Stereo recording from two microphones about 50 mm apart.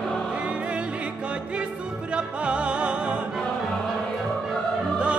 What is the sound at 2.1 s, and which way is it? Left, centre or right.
Music, right.